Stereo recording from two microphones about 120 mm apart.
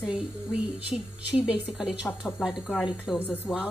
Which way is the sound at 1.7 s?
5° right (ahead or behind).